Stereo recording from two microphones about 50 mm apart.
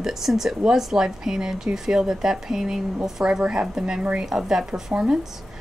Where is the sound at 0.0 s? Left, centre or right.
Centre.